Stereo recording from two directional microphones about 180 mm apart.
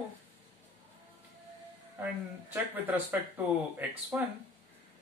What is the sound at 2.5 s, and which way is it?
Speech, 10° right (ahead or behind).